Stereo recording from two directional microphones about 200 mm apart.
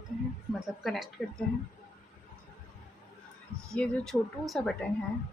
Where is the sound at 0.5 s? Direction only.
Centre (ahead or behind).